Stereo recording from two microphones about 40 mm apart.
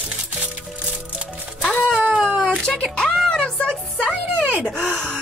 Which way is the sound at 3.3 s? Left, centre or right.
Centre.